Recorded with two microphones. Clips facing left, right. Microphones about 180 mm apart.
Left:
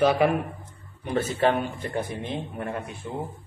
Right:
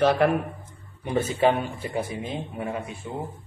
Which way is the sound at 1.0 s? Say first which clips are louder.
Right 1 dB; 15° right (ahead or behind).